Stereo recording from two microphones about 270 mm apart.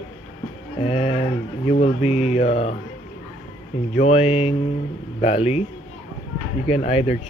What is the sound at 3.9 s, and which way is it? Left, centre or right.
Speech, left.